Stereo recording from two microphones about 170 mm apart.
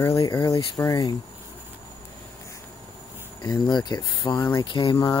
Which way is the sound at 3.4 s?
25° left (ahead or behind).